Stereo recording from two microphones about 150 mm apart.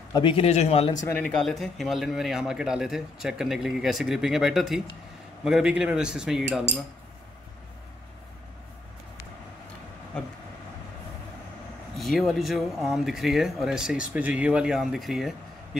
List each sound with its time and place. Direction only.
0.1 s speech: 35° left (ahead or behind)
0.9 s a man's voice: 15° left (ahead or behind); by 6.6 s 5° right (ahead or behind)
10.1 s vehicle: 5° left (ahead or behind)
12.0 s a man's voice: centre (ahead or behind)